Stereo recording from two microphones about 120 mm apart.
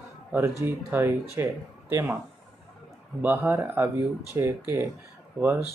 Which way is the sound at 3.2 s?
20° right (ahead or behind).